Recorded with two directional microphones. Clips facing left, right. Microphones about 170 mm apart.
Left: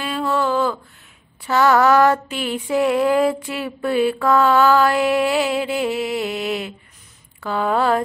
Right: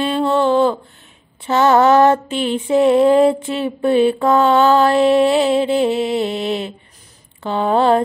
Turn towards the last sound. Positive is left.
turn(degrees=-25)  # may be behind; listen again after turning